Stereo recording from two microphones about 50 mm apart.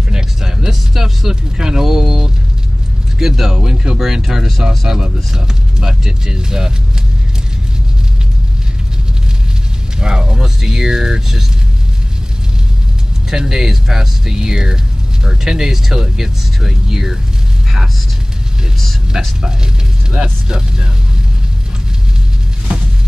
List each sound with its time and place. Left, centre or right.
0.1 s a sound: centre
3.2 s speech: centre
9.9 s speech: centre
13.3 s speech: centre
19.1 s speech: centre
20.4 s speech: centre